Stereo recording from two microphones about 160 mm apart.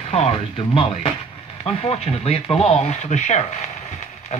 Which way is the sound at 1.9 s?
40° left (ahead or behind).